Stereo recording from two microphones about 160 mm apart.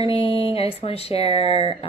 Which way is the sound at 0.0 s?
35° left (ahead or behind).